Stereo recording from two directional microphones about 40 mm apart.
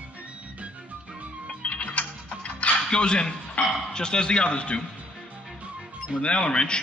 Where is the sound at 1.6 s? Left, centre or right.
Left.